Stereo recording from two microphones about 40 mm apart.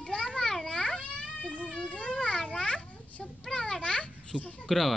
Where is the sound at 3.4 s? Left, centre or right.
Centre.